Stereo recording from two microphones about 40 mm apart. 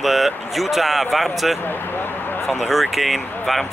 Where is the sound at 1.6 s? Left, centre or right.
Left.